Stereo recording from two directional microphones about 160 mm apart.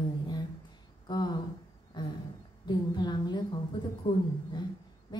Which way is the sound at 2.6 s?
25° left (ahead or behind).